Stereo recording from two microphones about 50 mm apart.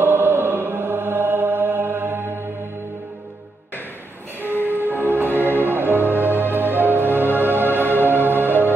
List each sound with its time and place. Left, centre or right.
0.0 s chant: right
4.6 s music: right